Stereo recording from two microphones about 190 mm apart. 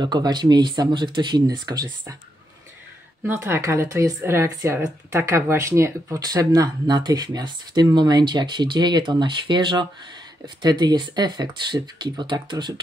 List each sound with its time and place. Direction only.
0.0 s speech: 20° right (ahead or behind)
3.3 s speech: 15° right (ahead or behind)